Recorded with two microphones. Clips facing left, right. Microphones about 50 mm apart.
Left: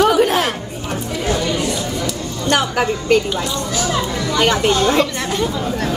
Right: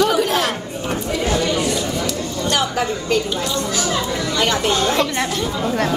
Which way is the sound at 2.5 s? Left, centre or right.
Left.